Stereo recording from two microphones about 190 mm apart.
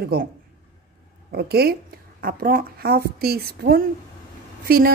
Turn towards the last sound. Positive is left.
turn(degrees=-50)  # may be behind; listen again after turning